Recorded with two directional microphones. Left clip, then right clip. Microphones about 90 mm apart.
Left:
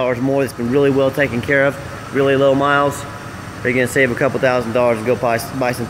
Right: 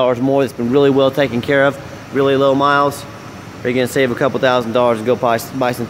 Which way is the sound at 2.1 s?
45° right (ahead or behind).